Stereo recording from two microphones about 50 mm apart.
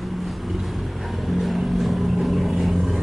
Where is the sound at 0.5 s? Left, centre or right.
Centre.